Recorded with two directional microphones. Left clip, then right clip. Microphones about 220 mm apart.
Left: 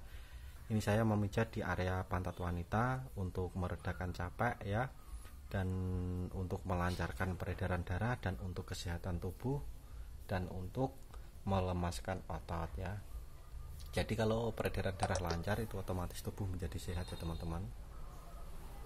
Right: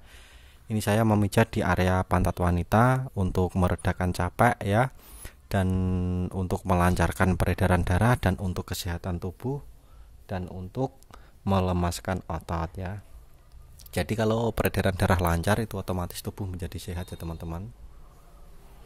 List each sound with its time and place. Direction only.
0.7 s speech: 40° right (ahead or behind)